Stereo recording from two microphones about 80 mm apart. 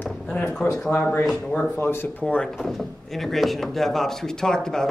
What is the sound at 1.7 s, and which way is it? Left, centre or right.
Speech, left.